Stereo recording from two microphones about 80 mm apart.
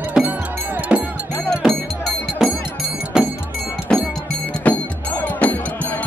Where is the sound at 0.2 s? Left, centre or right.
Centre.